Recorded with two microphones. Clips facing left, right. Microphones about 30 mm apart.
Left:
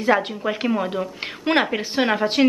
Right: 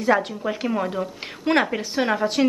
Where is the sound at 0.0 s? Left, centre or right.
Left.